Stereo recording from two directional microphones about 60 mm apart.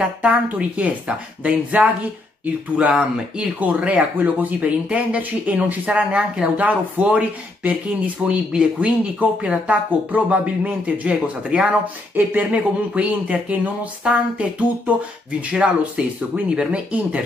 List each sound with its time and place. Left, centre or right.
0.2 s speech: right
2.9 s speech: centre